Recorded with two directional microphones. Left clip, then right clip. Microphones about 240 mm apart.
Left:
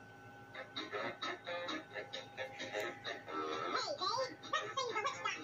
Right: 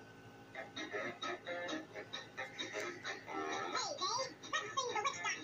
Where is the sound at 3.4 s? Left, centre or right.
Right.